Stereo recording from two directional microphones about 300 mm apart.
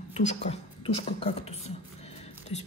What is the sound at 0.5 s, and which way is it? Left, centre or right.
A woman's voice, centre.